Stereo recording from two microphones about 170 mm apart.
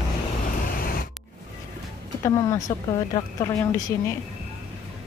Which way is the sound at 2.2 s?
20° left (ahead or behind).